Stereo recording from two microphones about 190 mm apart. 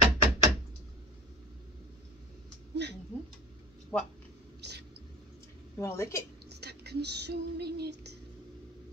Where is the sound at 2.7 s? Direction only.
65° right (ahead or behind).